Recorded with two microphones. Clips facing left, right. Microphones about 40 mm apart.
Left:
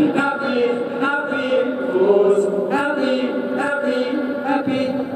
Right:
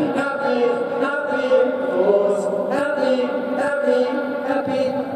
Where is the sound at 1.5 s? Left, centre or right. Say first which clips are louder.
Right 2 dB; left.